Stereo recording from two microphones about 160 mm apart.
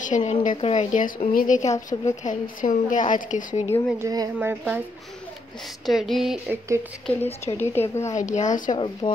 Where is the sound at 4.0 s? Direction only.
20° right (ahead or behind).